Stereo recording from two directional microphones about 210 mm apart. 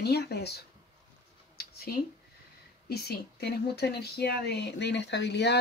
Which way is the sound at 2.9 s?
50° left (ahead or behind).